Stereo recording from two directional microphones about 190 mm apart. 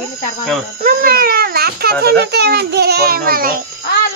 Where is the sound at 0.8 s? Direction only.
50° right (ahead or behind).